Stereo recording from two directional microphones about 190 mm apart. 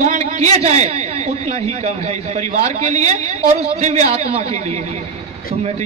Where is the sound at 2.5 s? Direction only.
35° right (ahead or behind).